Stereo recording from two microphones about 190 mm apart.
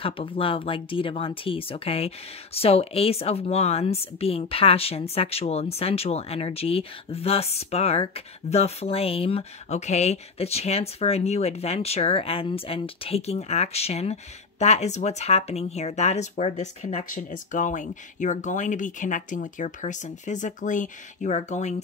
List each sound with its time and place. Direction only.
0.0 s speech: 30° left (ahead or behind)